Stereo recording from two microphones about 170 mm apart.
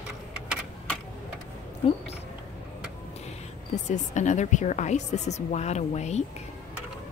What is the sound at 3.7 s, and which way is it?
A woman's voice, 45° left (ahead or behind).